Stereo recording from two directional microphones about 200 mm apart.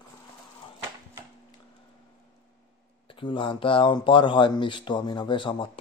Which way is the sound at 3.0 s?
25° left (ahead or behind).